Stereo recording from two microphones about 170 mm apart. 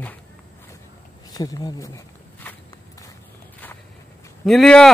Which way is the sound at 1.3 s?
20° left (ahead or behind).